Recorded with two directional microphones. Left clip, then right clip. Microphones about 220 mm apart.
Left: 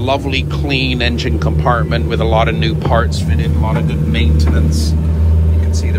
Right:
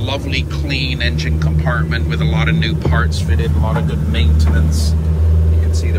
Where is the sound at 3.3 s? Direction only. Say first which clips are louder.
Left 1 dB; 10° right (ahead or behind).